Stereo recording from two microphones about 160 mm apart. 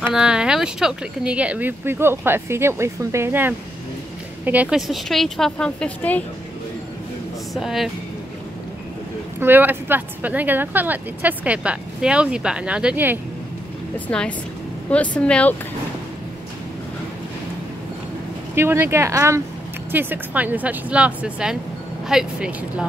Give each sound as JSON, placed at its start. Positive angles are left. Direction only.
{"t": 0.0, "sound": "a woman's voice", "side_deg": -5}
{"t": 7.5, "sound": "a woman's voice", "side_deg": 0}
{"t": 9.4, "sound": "speech", "side_deg": -10}
{"t": 13.9, "sound": "speech", "side_deg": 10}
{"t": 18.5, "sound": "a woman's voice", "side_deg": -15}